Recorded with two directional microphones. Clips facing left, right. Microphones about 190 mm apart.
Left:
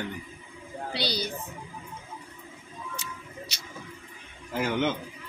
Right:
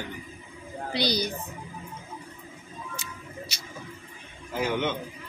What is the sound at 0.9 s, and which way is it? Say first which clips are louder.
Speech: right 4 dB; 15° right (ahead or behind).